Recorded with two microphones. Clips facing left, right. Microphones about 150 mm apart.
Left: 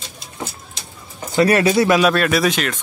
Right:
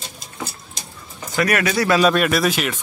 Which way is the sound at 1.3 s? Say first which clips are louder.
Left 5 dB; 30° left (ahead or behind).